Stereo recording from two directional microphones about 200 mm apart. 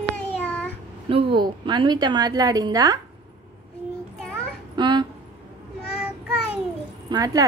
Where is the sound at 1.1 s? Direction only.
25° right (ahead or behind).